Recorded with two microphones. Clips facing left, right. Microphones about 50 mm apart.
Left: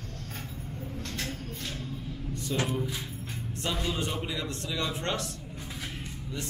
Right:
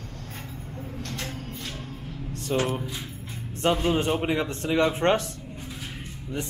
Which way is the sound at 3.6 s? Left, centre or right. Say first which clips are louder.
Right 9 dB; right.